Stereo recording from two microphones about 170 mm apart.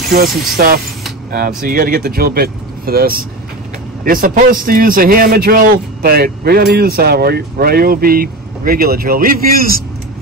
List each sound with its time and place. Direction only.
0.6 s a man's voice: 60° right (ahead or behind)